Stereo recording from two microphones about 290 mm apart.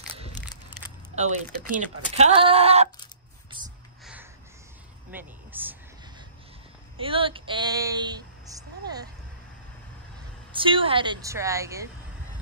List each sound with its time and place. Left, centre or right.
1.1 s speech: right
4.0 s a sound: centre
7.0 s speech: centre
10.5 s a woman's voice: centre